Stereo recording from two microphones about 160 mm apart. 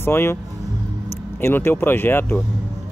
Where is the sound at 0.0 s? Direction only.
15° left (ahead or behind).